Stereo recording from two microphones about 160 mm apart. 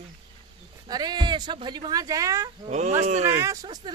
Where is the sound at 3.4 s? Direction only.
20° right (ahead or behind).